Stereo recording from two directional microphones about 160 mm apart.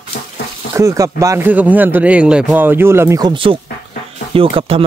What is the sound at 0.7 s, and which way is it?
Speech, 20° right (ahead or behind).